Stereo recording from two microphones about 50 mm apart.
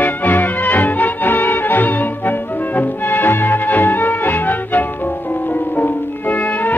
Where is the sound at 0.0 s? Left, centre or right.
Left.